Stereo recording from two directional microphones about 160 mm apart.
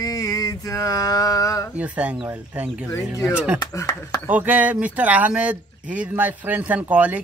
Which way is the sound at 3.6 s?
20° left (ahead or behind).